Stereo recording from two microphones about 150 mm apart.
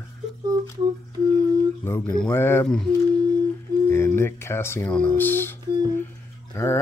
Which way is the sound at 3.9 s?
15° left (ahead or behind).